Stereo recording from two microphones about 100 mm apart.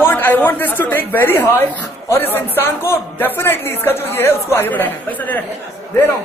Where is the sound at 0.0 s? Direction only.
20° left (ahead or behind).